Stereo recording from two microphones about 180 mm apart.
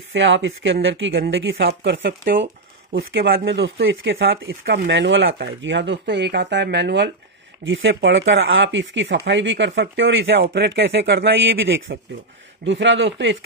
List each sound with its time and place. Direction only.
0.1 s speech: 90° right; by 7.1 s 70° right (ahead or behind)
7.6 s speech: 90° right; by 12.0 s 65° right (ahead or behind)
12.6 s a man's voice: 90° right